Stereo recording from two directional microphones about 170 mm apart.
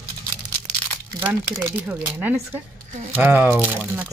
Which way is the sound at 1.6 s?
15° right (ahead or behind).